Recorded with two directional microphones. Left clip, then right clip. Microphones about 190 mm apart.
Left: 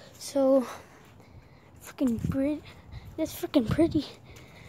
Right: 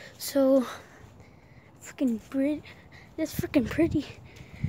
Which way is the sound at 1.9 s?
10° left (ahead or behind).